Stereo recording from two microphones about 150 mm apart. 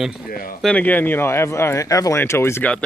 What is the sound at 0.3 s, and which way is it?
Speech, 70° left (ahead or behind).